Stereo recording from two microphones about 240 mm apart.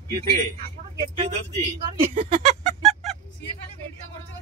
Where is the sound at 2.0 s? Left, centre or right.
Right.